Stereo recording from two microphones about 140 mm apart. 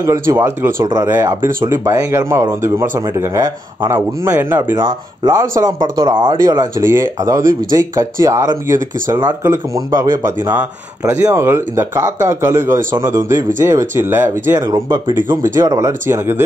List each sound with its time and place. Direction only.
0.0 s speech: 20° right (ahead or behind)